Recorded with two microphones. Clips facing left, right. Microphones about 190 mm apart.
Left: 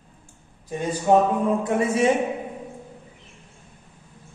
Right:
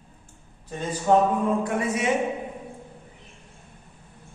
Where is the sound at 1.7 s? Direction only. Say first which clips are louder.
Left 5 dB; 30° left (ahead or behind).